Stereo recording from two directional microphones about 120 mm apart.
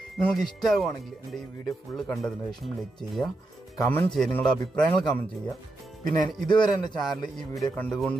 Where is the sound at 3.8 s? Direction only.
20° left (ahead or behind).